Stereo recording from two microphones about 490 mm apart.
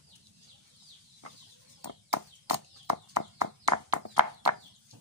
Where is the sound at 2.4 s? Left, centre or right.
Right.